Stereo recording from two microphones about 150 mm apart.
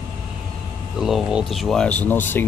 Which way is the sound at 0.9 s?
5° right (ahead or behind).